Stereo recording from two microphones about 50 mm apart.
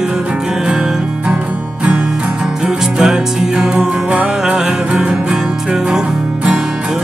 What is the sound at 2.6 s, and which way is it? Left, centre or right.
Music, centre.